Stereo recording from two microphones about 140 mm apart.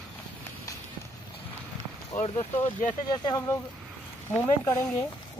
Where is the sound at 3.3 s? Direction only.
20° left (ahead or behind).